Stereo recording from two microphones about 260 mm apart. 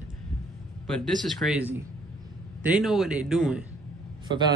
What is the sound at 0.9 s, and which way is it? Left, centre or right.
A man's voice, centre.